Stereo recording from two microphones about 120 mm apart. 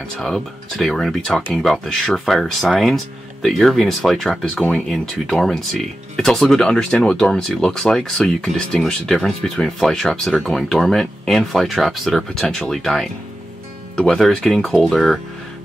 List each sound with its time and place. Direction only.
0.1 s speech: 5° left (ahead or behind)